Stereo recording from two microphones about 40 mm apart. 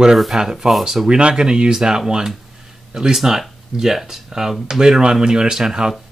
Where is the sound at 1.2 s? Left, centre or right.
Right.